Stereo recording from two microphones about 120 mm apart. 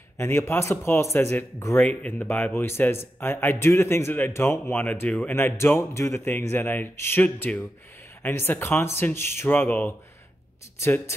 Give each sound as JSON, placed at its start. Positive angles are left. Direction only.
{"t": 0.2, "sound": "speech", "side_deg": 20}
{"t": 1.8, "sound": "speech", "side_deg": 10}